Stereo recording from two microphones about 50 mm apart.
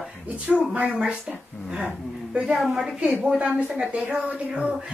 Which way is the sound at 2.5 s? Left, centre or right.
Centre.